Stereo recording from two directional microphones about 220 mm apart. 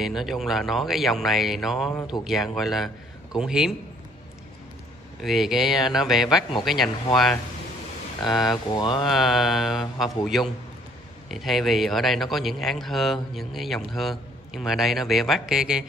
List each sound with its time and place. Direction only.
0.0 s a man's voice: centre (ahead or behind)
5.2 s a man's voice: centre (ahead or behind)
8.3 s a man's voice: centre (ahead or behind)
8.7 s speech: 20° left (ahead or behind)
9.0 s a man's voice: centre (ahead or behind)